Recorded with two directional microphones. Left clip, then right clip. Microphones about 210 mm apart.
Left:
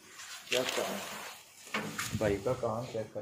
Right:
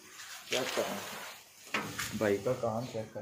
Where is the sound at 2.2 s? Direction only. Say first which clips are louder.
Right 1 dB; 15° right (ahead or behind).